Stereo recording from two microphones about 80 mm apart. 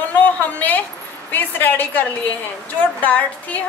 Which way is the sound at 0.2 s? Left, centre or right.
Centre.